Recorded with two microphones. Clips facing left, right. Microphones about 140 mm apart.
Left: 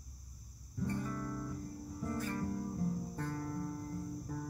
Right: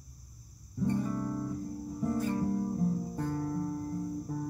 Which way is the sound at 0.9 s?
20° right (ahead or behind).